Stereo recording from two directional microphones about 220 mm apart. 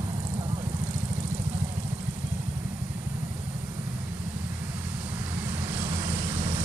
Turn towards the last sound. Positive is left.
turn(degrees=-30)  # may be behind; listen again after turning